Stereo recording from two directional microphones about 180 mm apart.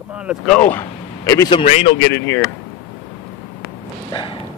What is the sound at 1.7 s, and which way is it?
Speech, 35° left (ahead or behind).